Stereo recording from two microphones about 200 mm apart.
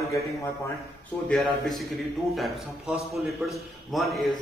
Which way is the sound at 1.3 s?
Centre (ahead or behind).